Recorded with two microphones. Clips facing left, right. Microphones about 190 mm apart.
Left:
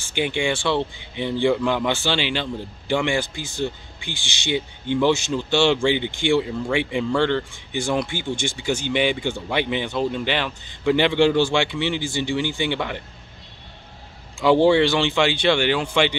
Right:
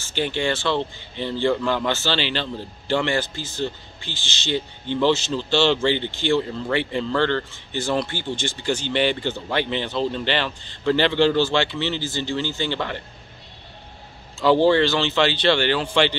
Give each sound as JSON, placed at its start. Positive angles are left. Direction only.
{"t": 0.1, "sound": "speech", "side_deg": 15}
{"t": 14.4, "sound": "speech", "side_deg": 15}